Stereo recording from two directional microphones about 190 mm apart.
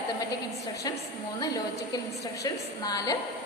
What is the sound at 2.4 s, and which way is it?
Speech, 20° left (ahead or behind).